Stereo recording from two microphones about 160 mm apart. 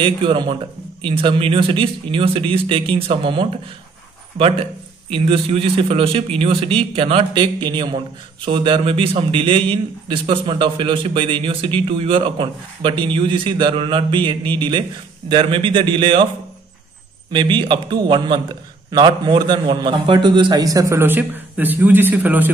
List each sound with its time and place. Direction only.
0.0 s a man's voice: 30° right (ahead or behind)
17.3 s a man's voice: 30° right (ahead or behind); by 22.5 s 10° right (ahead or behind)